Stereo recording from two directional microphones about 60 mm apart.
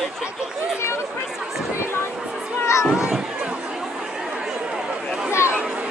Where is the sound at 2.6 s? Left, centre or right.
Left.